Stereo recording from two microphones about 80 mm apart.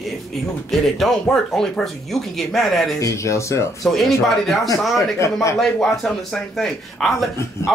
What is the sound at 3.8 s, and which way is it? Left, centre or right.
Speech, centre.